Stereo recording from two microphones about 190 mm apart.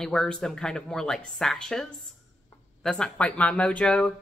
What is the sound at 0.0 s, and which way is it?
A woman's voice, 5° left (ahead or behind).